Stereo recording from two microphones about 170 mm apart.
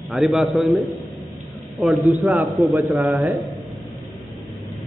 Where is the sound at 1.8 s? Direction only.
Centre (ahead or behind).